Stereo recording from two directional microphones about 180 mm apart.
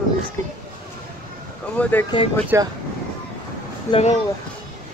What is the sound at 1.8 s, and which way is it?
Speech, 10° left (ahead or behind).